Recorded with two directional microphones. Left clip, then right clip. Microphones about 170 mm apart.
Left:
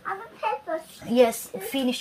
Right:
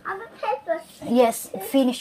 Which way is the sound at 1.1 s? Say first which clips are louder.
Right 1 dB; 25° right (ahead or behind).